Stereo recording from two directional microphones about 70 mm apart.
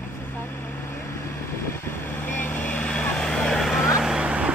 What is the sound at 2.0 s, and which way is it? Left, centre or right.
Vehicle, left.